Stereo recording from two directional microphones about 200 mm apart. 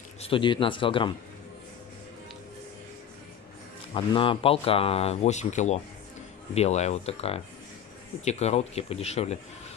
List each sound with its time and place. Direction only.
0.2 s speech: 25° left (ahead or behind)
3.9 s speech: 25° left (ahead or behind)